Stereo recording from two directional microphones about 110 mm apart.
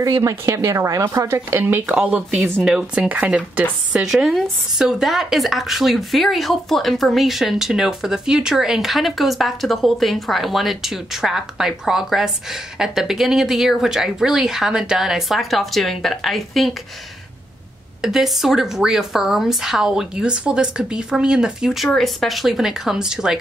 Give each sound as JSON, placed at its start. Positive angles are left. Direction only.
{"t": 0.0, "sound": "a woman's voice", "side_deg": -30}
{"t": 2.4, "sound": "a woman's voice", "side_deg": 0}
{"t": 18.0, "sound": "a woman's voice", "side_deg": -5}